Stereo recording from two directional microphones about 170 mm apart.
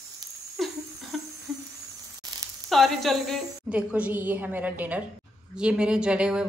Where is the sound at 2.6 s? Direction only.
Centre (ahead or behind).